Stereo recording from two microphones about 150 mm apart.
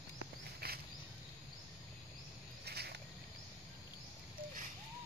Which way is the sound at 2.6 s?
90° right.